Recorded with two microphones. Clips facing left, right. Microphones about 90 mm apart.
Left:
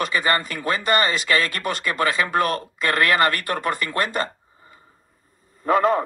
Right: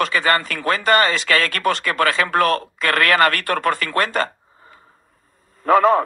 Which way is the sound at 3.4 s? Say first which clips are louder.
Right 4 dB; 60° right (ahead or behind).